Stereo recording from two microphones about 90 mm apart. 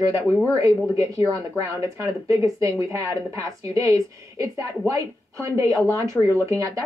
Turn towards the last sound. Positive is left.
turn(degrees=-35)  # may be behind; listen again after turning